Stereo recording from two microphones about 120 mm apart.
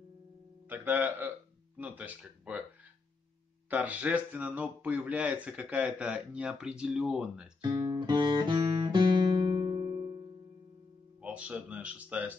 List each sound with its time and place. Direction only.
0.7 s speech: 15° right (ahead or behind)
3.7 s speech: 10° right (ahead or behind)
7.6 s music: 35° right (ahead or behind)
11.1 s speech: 10° right (ahead or behind)